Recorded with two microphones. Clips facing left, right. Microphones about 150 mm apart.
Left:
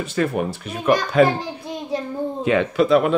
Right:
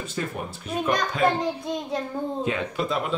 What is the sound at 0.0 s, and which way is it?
Speech, 75° left (ahead or behind).